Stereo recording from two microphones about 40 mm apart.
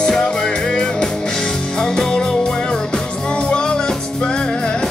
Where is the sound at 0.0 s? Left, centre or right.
Centre.